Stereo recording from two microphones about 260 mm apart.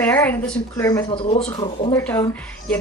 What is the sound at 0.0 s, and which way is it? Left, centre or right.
Speech, centre.